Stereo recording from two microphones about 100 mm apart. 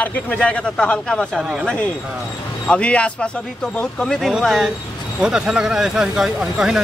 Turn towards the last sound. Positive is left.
turn(degrees=-5)  # may be behind; listen again after turning